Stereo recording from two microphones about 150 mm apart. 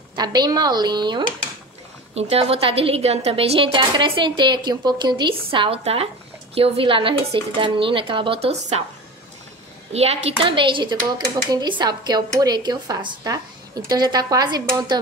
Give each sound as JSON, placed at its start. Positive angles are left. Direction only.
{"t": 0.1, "sound": "a woman's voice", "side_deg": -25}
{"t": 2.1, "sound": "speech", "side_deg": -40}
{"t": 9.9, "sound": "a woman's voice", "side_deg": -45}